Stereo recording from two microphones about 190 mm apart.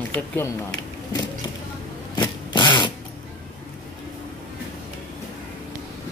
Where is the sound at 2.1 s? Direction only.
25° left (ahead or behind).